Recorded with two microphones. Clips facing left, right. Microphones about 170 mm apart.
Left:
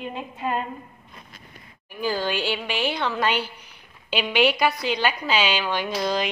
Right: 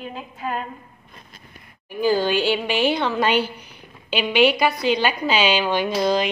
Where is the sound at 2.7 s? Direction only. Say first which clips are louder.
Right 5 dB; 5° right (ahead or behind).